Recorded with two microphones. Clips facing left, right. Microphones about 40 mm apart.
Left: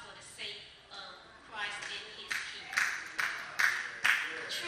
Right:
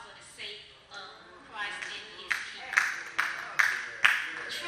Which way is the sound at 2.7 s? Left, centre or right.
Right.